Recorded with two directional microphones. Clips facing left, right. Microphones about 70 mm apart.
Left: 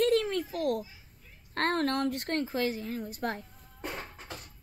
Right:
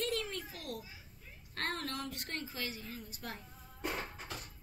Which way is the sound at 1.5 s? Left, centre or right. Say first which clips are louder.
Left 11 dB; left.